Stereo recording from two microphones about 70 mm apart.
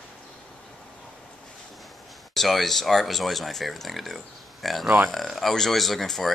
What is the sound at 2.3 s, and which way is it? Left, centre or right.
Speech, centre.